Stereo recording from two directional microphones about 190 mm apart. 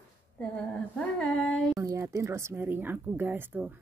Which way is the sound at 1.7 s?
15° right (ahead or behind).